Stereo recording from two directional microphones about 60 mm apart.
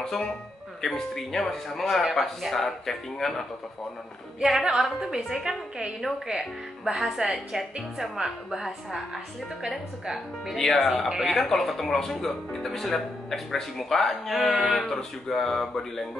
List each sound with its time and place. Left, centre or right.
0.0 s a woman's voice: centre
11.2 s speech: centre